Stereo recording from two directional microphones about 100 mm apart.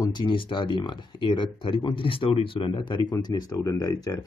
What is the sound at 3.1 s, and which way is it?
Speech, 40° left (ahead or behind).